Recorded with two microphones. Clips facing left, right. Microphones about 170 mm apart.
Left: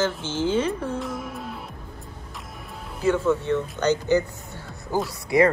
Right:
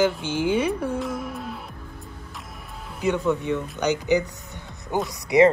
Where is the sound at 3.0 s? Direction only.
15° right (ahead or behind).